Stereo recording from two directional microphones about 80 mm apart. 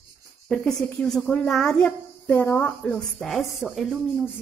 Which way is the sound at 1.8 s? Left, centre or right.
Left.